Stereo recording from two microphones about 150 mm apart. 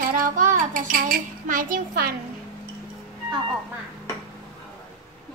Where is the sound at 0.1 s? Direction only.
60° right (ahead or behind).